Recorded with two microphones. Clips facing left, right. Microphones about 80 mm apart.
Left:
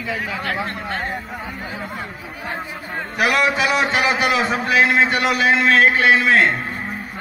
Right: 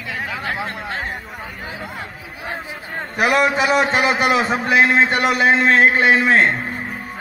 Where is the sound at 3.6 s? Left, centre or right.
Right.